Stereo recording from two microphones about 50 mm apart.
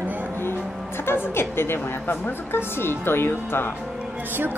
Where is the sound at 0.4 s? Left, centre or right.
Left.